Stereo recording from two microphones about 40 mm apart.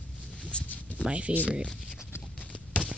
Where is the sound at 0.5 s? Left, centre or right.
Left.